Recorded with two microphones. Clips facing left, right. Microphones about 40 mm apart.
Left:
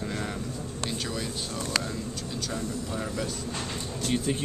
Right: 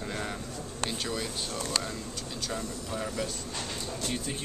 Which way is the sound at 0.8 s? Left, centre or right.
Centre.